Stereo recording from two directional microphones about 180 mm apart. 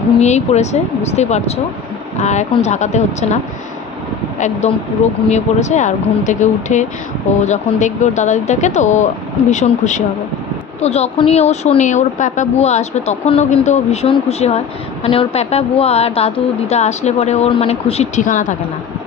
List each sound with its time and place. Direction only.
0.2 s a woman's voice: 40° left (ahead or behind)
5.3 s a woman's voice: 40° left (ahead or behind)